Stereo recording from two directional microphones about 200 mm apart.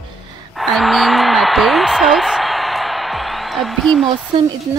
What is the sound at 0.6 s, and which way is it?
Speech, centre (ahead or behind).